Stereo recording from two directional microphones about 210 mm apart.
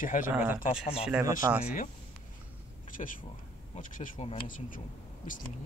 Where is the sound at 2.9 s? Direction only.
40° left (ahead or behind).